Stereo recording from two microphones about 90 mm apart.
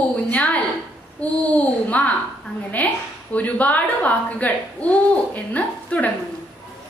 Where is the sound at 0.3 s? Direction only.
15° left (ahead or behind).